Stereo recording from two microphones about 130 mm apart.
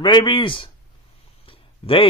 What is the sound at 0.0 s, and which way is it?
Speech, 35° left (ahead or behind).